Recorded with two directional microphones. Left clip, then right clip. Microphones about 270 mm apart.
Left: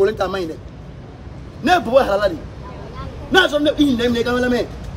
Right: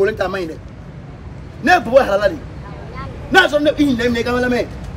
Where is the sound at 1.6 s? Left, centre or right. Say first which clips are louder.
Right 2 dB; centre.